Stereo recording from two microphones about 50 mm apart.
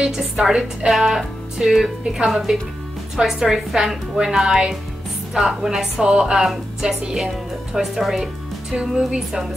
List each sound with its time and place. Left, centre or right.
0.0 s a woman's voice: centre
8.7 s a woman's voice: centre